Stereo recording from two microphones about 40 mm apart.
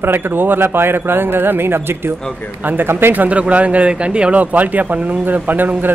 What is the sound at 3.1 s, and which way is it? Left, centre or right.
Speech, right.